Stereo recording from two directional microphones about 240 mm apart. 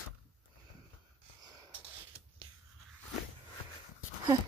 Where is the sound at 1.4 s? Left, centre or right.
Centre.